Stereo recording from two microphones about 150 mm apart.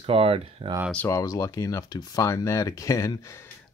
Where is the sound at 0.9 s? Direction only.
20° left (ahead or behind).